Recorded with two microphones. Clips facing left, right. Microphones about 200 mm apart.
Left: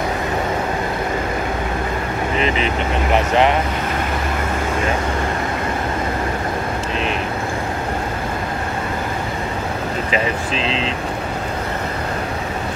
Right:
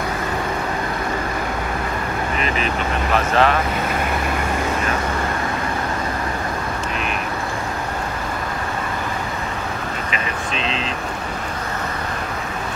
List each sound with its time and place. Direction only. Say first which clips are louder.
2.3 s speech: left 4 dB; 25° left (ahead or behind)